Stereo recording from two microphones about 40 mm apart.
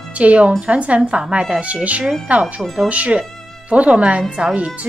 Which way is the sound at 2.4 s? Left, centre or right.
Centre.